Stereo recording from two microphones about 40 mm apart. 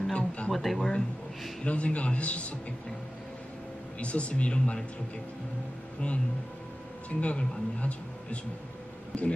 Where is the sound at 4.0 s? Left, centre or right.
Left.